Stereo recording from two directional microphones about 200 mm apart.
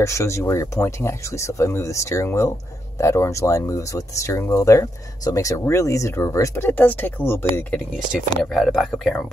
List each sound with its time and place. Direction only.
0.0 s speech: 15° left (ahead or behind)
8.4 s speech: centre (ahead or behind)